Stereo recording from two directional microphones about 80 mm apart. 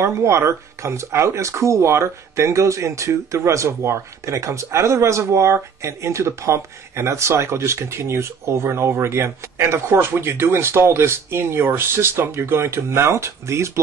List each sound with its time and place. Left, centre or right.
0.0 s speech: right